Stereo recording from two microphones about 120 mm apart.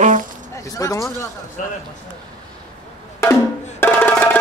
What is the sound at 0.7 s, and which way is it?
Speech, 30° left (ahead or behind).